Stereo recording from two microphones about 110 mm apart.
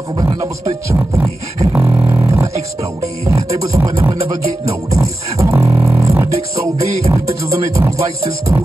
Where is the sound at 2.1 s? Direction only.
25° right (ahead or behind).